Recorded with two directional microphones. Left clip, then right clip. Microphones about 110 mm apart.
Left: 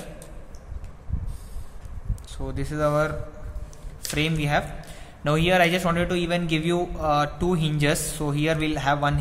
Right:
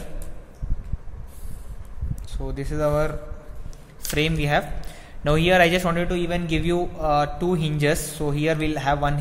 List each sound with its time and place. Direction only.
2.3 s a man's voice: 10° right (ahead or behind)
4.1 s a man's voice: 30° right (ahead or behind)
6.0 s a man's voice: 5° right (ahead or behind)